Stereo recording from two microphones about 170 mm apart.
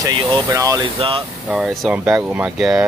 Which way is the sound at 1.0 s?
30° right (ahead or behind).